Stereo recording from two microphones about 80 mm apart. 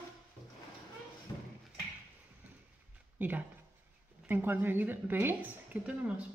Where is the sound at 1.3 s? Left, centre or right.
Left.